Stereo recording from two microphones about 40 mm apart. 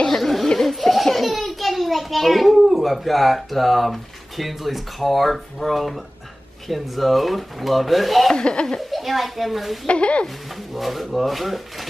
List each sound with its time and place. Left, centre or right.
0.1 s a sound: centre
0.6 s a child's voice: centre
8.3 s speech: left
8.9 s speech: centre
9.8 s speech: left
10.2 s speech: centre